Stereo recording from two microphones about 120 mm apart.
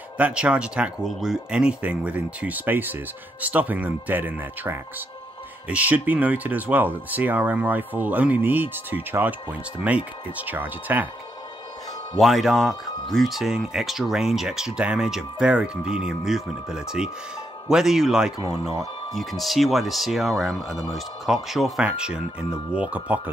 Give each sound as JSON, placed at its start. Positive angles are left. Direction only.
{"t": 0.2, "sound": "speech", "side_deg": -10}
{"t": 12.2, "sound": "speech", "side_deg": 0}